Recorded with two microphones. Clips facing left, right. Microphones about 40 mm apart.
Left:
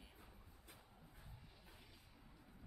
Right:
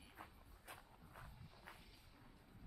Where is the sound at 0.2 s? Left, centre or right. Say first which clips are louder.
Right 5 dB; right.